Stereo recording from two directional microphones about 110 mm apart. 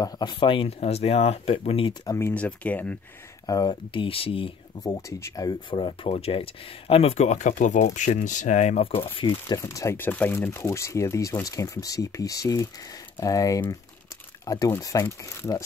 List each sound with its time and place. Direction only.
0.0 s speech: 45° left (ahead or behind); by 1.9 s 65° left (ahead or behind)
2.0 s speech: 25° left (ahead or behind)
2.3 s speech: 15° left (ahead or behind)
3.4 s speech: 35° left (ahead or behind)
3.9 s speech: 55° left (ahead or behind)
4.8 s speech: 30° left (ahead or behind)
5.7 s speech: 50° left (ahead or behind)
9.6 s speech: 25° left (ahead or behind)